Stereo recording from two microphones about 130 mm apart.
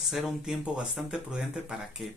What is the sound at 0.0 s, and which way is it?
Speech, centre (ahead or behind).